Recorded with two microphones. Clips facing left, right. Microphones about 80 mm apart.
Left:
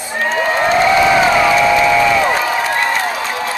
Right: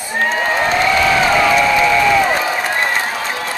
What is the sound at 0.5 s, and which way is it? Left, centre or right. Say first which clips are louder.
Crowd: left 5 dB; centre.